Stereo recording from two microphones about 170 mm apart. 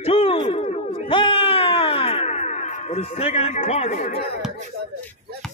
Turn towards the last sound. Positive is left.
turn(degrees=45)  # may be behind; listen again after turning